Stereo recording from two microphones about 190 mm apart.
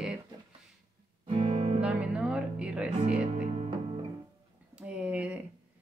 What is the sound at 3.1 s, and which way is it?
Music, 30° right (ahead or behind).